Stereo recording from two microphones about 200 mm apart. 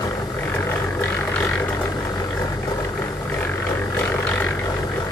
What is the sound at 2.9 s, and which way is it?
Vehicle, 15° left (ahead or behind).